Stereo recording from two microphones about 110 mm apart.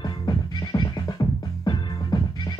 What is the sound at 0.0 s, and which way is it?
Music, 40° left (ahead or behind).